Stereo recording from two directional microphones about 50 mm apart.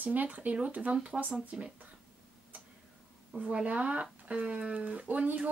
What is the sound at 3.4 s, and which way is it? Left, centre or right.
A woman's voice, right.